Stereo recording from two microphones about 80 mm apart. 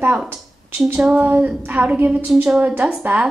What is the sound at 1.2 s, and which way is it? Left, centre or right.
A woman's voice, right.